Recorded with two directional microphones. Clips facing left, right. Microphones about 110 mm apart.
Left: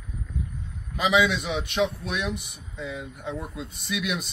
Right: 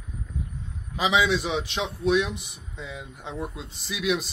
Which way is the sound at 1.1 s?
30° right (ahead or behind).